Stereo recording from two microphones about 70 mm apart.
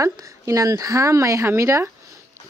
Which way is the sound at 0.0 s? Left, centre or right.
Right.